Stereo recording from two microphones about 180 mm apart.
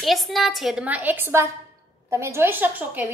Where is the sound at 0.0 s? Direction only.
Centre (ahead or behind).